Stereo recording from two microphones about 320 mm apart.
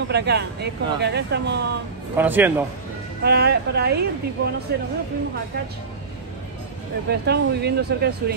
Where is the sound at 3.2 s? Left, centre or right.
Right.